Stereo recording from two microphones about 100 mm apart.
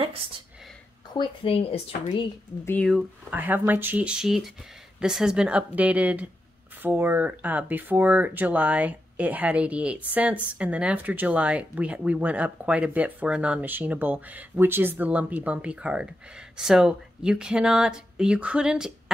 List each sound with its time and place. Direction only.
1.1 s speech: 60° left (ahead or behind)
3.3 s speech: 15° right (ahead or behind)